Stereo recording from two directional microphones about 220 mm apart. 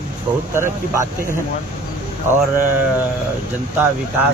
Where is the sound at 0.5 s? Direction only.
10° right (ahead or behind).